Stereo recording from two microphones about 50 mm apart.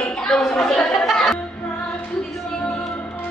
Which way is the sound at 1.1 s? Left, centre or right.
Centre.